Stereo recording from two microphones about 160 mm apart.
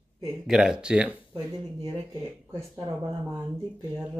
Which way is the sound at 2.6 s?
20° right (ahead or behind).